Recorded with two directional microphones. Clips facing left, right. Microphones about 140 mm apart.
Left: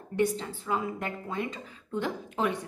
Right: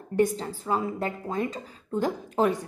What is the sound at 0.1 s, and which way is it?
A woman's voice, 40° right (ahead or behind).